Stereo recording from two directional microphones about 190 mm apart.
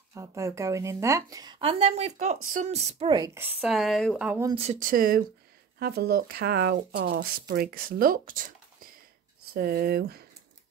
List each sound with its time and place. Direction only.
0.1 s speech: 15° right (ahead or behind); by 3.1 s 35° right (ahead or behind)
3.3 s speech: 5° right (ahead or behind)
4.3 s speech: 15° right (ahead or behind)
4.6 s speech: 40° right (ahead or behind); by 10.2 s 55° right (ahead or behind)